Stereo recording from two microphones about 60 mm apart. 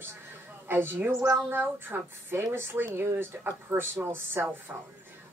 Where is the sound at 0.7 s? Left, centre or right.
Right.